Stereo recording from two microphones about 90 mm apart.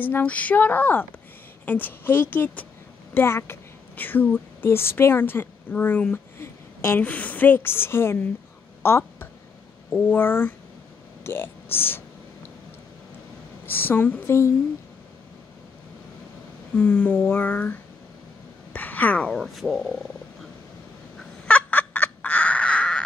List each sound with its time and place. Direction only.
0.0 s a woman's voice: 20° left (ahead or behind)
6.1 s a sound: 25° left (ahead or behind)
7.0 s a woman's voice: 15° left (ahead or behind)
13.7 s a woman's voice: 25° left (ahead or behind)
16.7 s speech: 15° left (ahead or behind)
19.3 s speech: centre (ahead or behind)
21.2 s fowl: 15° left (ahead or behind)